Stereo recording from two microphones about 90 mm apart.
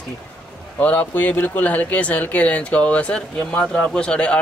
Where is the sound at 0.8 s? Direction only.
15° left (ahead or behind).